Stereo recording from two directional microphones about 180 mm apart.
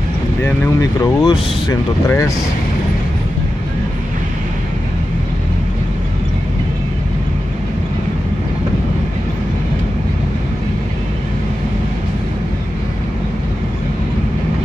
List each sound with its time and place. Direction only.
0.4 s speech: 20° left (ahead or behind)